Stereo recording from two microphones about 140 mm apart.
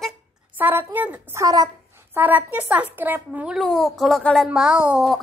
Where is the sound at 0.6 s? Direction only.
15° right (ahead or behind).